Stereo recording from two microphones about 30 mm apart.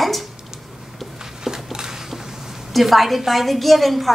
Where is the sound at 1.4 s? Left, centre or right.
Centre.